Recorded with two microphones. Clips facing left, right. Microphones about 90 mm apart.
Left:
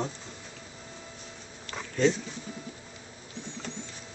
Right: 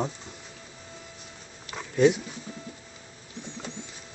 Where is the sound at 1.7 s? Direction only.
10° right (ahead or behind).